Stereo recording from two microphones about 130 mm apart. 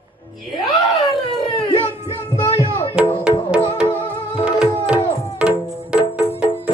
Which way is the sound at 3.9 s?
15° left (ahead or behind).